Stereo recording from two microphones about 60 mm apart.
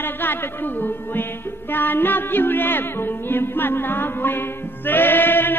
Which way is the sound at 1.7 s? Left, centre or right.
Left.